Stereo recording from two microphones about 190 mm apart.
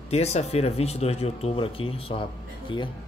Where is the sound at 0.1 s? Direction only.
35° left (ahead or behind).